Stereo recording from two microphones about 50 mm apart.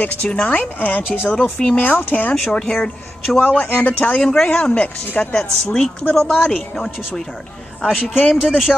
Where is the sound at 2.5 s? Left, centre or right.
Left.